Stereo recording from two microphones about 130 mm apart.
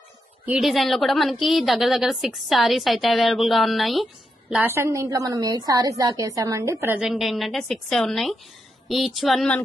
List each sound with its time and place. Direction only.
0.5 s a woman's voice: centre (ahead or behind)
4.6 s a woman's voice: 20° right (ahead or behind)
7.0 s a woman's voice: 5° right (ahead or behind)